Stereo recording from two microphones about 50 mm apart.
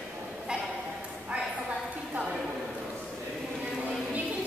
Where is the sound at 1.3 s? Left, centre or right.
Right.